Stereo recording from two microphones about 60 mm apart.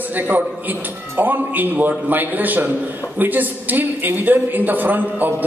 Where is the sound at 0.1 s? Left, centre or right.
Right.